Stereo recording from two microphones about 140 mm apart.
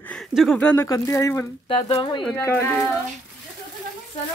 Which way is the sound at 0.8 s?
25° left (ahead or behind).